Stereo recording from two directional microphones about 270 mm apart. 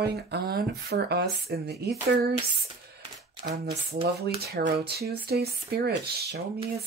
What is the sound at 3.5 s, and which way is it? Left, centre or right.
Speech, right.